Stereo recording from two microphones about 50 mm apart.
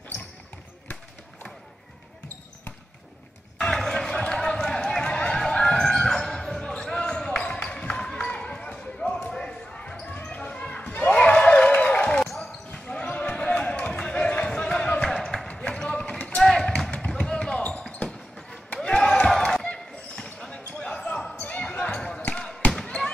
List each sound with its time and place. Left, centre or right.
3.5 s a sound: centre
6.8 s basketball bounce: centre
10.9 s a sound: left
12.3 s basketball bounce: centre
12.7 s basketball bounce: left
13.1 s run: left
14.5 s a sound: centre
15.0 s run: centre
15.7 s clip-clop: centre
16.4 s basketball bounce: centre
16.9 s a sound: centre
18.8 s basketball bounce: centre
21.4 s basketball bounce: left
22.8 s basketball bounce: centre